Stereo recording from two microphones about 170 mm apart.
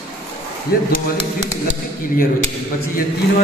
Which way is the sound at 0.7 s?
65° left (ahead or behind).